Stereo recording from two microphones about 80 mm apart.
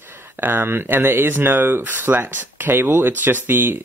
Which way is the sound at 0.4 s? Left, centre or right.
Right.